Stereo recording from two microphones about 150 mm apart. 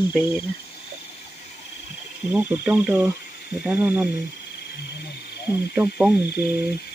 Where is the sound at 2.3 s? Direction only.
10° right (ahead or behind).